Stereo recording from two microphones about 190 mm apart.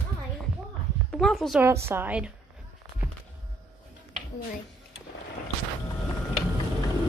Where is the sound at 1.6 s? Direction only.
10° right (ahead or behind).